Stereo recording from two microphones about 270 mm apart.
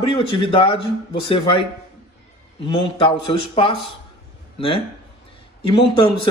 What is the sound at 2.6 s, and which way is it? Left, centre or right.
A man's voice, centre.